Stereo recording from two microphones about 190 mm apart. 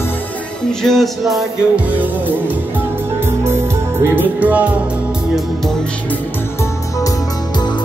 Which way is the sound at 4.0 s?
10° right (ahead or behind).